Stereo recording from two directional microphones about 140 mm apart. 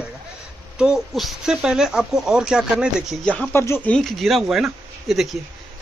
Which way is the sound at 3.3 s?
10° left (ahead or behind).